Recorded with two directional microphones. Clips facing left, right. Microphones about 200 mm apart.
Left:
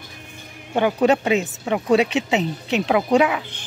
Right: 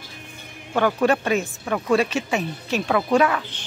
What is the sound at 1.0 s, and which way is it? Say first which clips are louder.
Speech: left 2 dB; 20° left (ahead or behind).